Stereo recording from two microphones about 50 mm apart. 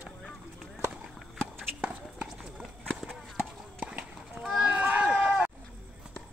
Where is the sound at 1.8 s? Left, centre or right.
Right.